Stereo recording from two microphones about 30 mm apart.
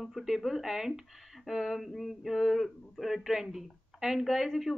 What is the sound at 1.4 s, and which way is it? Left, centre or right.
Speech, centre.